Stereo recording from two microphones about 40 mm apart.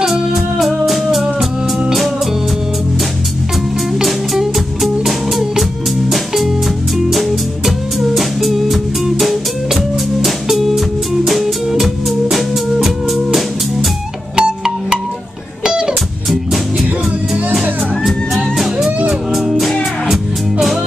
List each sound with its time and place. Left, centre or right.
0.0 s music: centre
4.0 s music: centre
11.8 s music: centre
14.3 s music: centre
17.3 s music: centre